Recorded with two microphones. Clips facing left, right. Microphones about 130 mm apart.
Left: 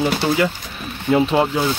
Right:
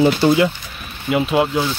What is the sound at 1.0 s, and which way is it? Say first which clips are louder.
Speech: left 1 dB; 10° right (ahead or behind).